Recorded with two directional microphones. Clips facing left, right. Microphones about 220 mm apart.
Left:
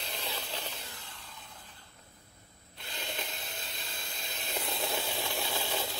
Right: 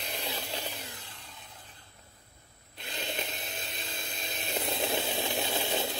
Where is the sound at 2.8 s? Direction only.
20° right (ahead or behind).